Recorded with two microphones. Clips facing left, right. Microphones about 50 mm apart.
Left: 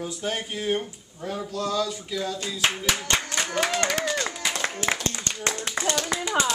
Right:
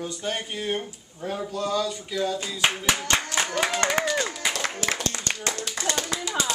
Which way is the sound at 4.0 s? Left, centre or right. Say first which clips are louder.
Right 1 dB; centre.